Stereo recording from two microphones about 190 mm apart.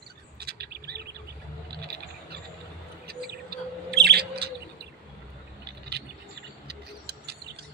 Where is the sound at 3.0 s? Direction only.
55° right (ahead or behind).